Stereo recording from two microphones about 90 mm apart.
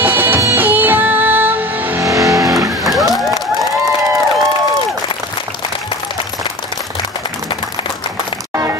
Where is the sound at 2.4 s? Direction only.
Centre (ahead or behind).